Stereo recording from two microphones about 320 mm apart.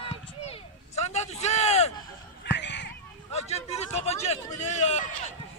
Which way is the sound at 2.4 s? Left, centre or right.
Left.